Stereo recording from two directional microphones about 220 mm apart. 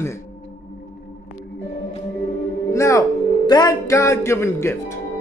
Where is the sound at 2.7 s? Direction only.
15° left (ahead or behind).